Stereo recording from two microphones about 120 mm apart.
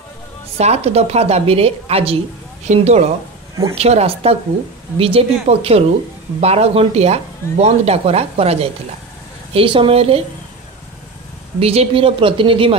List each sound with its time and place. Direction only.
0.6 s speech: 60° right (ahead or behind)
2.6 s speech: 70° right (ahead or behind)
9.5 s speech: 50° right (ahead or behind)
11.6 s speech: 55° right (ahead or behind)